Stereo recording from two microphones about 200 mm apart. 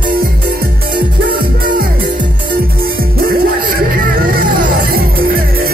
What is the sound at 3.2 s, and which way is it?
Music, 50° right (ahead or behind).